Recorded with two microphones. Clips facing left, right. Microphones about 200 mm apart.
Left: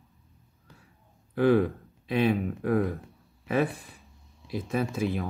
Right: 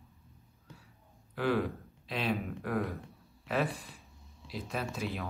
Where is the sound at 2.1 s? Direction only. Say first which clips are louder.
Left 8 dB; 50° left (ahead or behind).